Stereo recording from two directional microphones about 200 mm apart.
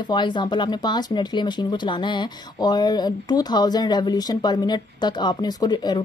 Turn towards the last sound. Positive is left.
turn(degrees=20)  # may be behind; listen again after turning